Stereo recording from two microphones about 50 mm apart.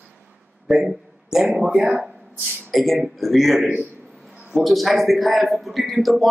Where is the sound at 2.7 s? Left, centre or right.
Centre.